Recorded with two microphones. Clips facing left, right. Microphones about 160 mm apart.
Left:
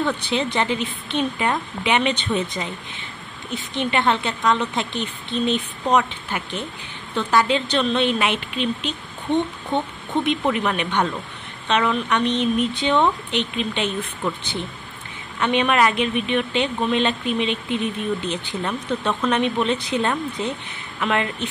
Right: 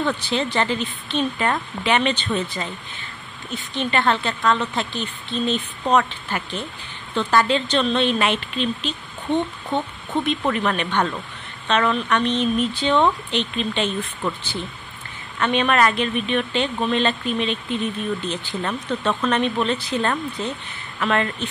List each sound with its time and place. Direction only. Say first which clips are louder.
0.0 s speech: even; 15° left (ahead or behind)
3.7 s speech: even; 15° left (ahead or behind)
9.7 s speech: left 1 dB; 20° left (ahead or behind)
15.3 s speech: even; 15° left (ahead or behind)